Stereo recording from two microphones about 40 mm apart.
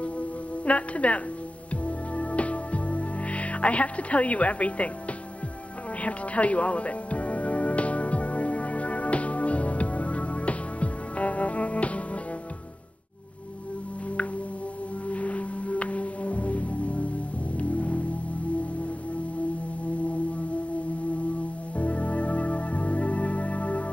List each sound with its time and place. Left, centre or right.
0.7 s speech: left
1.7 s music: left
6.0 s music: left
15.0 s music: left
21.7 s music: left